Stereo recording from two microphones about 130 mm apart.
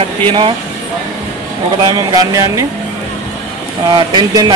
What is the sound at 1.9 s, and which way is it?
Speech, 30° right (ahead or behind).